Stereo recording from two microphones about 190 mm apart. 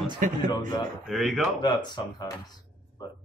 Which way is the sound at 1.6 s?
20° left (ahead or behind).